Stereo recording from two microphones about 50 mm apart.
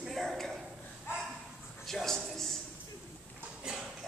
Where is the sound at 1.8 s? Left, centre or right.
Centre.